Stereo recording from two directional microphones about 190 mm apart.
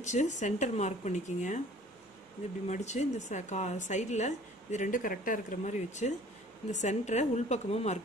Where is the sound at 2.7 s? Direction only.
35° left (ahead or behind).